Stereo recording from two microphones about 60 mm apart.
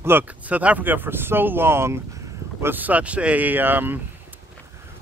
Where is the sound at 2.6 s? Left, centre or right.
Right.